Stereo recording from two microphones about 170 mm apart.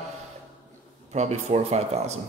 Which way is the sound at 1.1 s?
40° right (ahead or behind).